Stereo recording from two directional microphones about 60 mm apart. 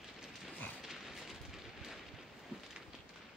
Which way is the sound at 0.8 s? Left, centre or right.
Centre.